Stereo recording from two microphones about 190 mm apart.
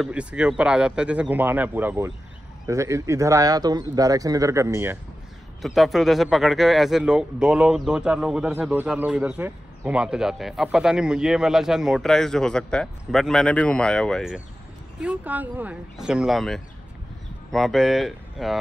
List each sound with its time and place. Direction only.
0.0 s a man's voice: 5° right (ahead or behind)
5.6 s a man's voice: centre (ahead or behind)